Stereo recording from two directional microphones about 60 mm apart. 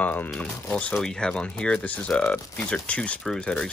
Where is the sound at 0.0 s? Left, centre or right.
Left.